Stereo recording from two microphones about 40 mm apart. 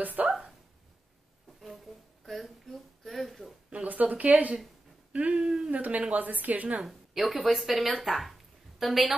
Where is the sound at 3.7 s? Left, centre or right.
Right.